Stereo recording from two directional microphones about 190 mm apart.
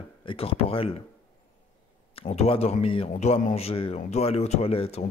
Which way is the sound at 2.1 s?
30° left (ahead or behind).